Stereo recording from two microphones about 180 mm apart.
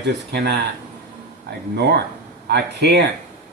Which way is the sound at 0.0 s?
70° right (ahead or behind).